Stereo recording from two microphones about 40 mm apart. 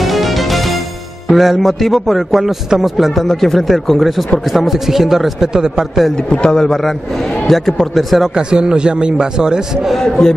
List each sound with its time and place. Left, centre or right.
0.0 s music: centre
1.3 s speech: centre
1.6 s speech: centre
3.3 s a man's voice: centre
6.4 s a man's voice: centre
8.4 s a man's voice: right
9.9 s a man's voice: centre